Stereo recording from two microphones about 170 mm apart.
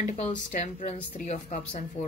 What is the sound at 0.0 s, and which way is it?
Speech, 45° left (ahead or behind).